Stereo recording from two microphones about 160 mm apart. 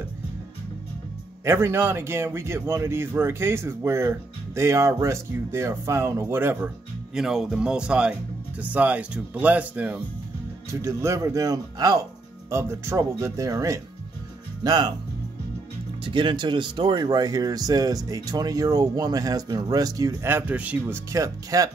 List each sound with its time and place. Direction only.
1.4 s speech: 15° right (ahead or behind)
7.2 s speech: centre (ahead or behind); by 14.9 s 25° right (ahead or behind)
16.0 s speech: 30° right (ahead or behind); by 21.0 s 10° right (ahead or behind)
21.1 s speech: 20° right (ahead or behind)